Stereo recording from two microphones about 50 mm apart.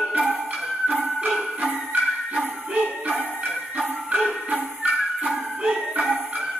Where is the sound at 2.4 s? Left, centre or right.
Right.